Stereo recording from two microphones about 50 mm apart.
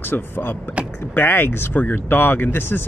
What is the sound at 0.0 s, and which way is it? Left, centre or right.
Speech, left.